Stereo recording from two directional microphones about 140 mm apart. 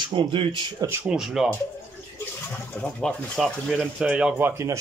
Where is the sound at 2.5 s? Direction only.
15° left (ahead or behind).